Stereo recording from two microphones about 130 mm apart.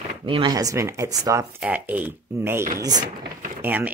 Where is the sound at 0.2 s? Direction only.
40° right (ahead or behind); by 1.6 s 20° right (ahead or behind).